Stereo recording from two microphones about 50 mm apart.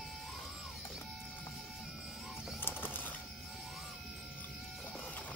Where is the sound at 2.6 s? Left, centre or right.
Left.